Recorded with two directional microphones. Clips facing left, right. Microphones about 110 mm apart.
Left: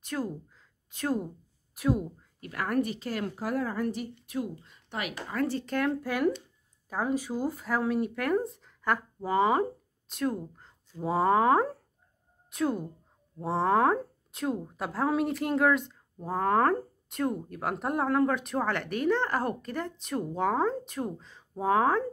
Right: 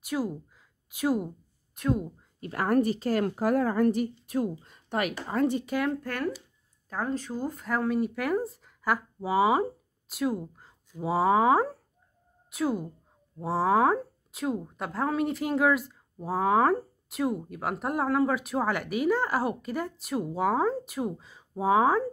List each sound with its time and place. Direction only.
0.0 s speech: 10° right (ahead or behind)
1.8 s speech: 5° left (ahead or behind)
2.4 s speech: 30° right (ahead or behind)
5.3 s speech: 20° right (ahead or behind)
5.7 s speech: centre (ahead or behind)